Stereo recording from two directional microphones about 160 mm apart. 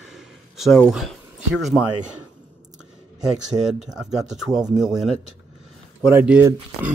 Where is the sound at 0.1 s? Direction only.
Centre (ahead or behind).